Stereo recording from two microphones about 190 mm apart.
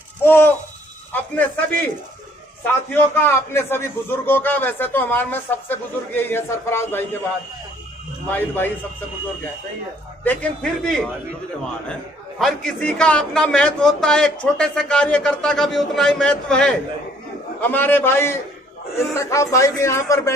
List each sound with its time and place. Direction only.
0.2 s a sound: 10° left (ahead or behind)
1.1 s a man's voice: 10° left (ahead or behind)
8.3 s a man's voice: 10° left (ahead or behind)
10.2 s a man's voice: 5° left (ahead or behind)